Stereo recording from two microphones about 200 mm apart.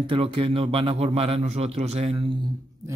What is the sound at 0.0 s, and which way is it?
Speech, 25° right (ahead or behind).